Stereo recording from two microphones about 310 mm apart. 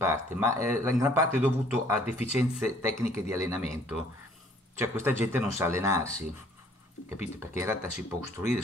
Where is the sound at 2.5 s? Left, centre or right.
Centre.